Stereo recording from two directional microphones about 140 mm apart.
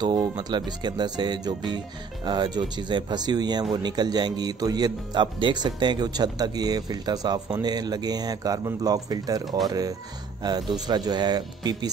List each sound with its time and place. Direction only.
0.0 s speech: 30° right (ahead or behind)